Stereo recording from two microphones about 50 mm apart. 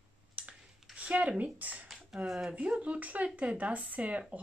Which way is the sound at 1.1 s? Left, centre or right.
Right.